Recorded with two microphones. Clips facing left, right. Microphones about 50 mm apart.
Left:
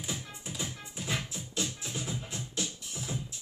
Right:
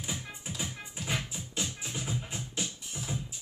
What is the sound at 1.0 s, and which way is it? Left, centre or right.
Music, centre.